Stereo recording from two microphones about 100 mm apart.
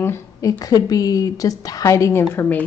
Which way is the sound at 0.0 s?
25° left (ahead or behind).